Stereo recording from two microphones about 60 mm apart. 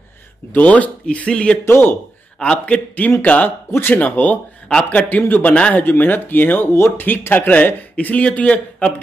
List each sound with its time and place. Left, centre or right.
0.5 s a man's voice: left
1.6 s speech: left
2.3 s a man's voice: centre
3.7 s speech: left
6.7 s speech: left
7.1 s a man's voice: left